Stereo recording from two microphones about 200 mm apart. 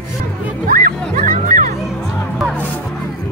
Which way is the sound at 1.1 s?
40° right (ahead or behind).